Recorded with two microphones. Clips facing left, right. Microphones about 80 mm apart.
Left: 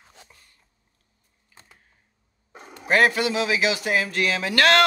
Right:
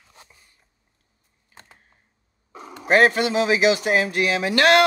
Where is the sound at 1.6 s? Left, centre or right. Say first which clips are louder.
Right 3 dB; right.